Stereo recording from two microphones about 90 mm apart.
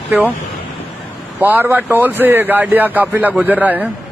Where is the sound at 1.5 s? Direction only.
20° right (ahead or behind).